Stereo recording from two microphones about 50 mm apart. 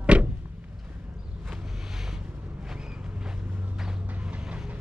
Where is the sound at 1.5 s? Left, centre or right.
Centre.